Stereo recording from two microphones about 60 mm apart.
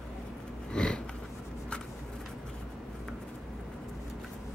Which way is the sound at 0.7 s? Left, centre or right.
Centre.